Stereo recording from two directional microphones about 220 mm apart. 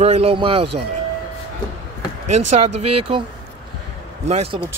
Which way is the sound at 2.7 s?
90° right.